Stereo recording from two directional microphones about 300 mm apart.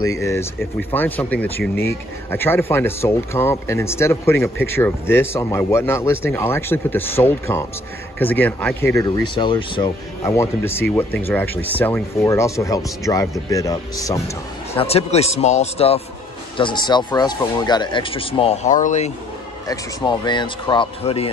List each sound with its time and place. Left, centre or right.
0.0 s speech: centre